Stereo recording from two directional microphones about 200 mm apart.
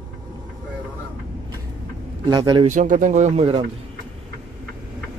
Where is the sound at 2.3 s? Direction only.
25° right (ahead or behind).